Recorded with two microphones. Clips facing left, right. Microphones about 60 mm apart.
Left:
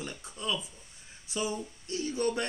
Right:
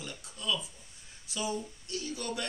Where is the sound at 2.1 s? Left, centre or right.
Left.